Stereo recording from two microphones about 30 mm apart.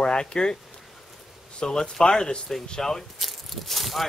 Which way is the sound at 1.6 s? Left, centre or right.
Left.